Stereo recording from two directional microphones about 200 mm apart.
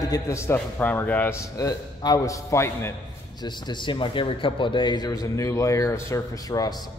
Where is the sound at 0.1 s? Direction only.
15° left (ahead or behind).